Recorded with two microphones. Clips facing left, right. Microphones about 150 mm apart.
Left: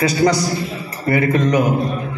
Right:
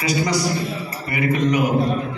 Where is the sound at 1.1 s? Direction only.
40° left (ahead or behind).